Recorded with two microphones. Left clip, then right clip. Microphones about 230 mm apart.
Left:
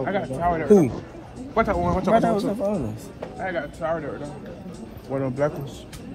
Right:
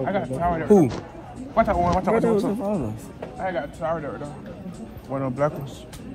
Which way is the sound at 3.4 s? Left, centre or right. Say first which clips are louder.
Right 1 dB; centre.